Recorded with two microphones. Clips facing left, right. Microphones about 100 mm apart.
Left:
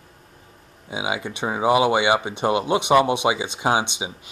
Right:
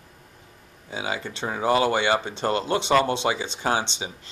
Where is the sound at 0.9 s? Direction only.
15° left (ahead or behind).